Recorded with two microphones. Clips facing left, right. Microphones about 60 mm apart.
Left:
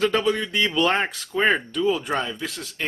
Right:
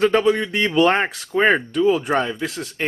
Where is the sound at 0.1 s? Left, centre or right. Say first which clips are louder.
Right 5 dB; centre.